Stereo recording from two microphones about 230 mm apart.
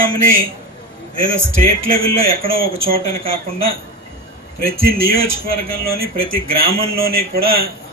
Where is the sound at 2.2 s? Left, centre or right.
Right.